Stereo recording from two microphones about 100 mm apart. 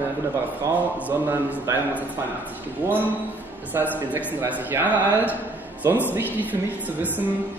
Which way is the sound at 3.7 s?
20° right (ahead or behind).